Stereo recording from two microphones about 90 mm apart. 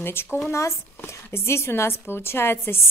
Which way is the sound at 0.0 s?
25° left (ahead or behind).